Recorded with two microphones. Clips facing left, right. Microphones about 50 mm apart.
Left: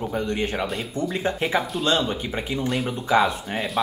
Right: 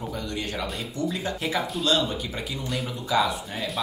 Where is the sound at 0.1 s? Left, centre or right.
Left.